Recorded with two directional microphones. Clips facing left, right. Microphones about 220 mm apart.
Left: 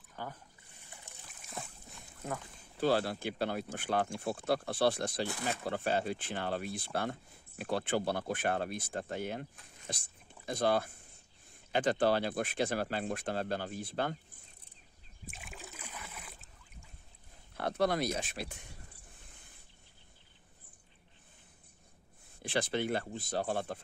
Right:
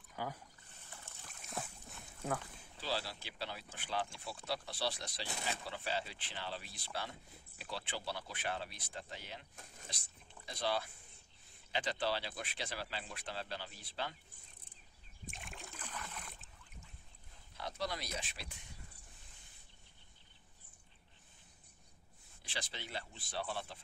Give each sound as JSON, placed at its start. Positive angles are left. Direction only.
{"t": 0.1, "sound": "a sound", "side_deg": -10}
{"t": 0.8, "sound": "trickle", "side_deg": 15}
{"t": 1.5, "sound": "boat", "side_deg": 0}
{"t": 2.8, "sound": "speech", "side_deg": 55}
{"t": 15.3, "sound": "rowboat", "side_deg": 5}
{"t": 17.6, "sound": "speech", "side_deg": 55}
{"t": 22.4, "sound": "speech", "side_deg": 55}